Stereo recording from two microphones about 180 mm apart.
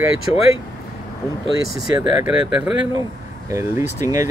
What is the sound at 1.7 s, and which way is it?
Speech, 5° right (ahead or behind).